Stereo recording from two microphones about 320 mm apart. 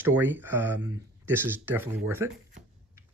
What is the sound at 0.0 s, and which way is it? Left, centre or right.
Speech, centre.